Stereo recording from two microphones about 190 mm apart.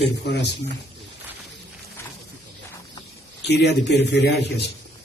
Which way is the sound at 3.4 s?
60° left (ahead or behind).